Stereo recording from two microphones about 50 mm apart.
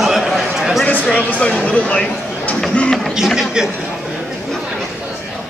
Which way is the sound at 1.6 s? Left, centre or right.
Left.